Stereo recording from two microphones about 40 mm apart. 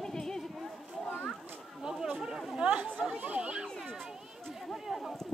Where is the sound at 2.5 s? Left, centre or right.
Right.